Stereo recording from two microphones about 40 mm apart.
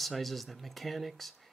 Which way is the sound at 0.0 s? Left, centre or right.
Centre.